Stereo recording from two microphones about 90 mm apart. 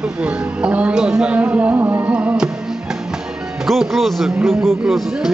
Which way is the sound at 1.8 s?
20° right (ahead or behind).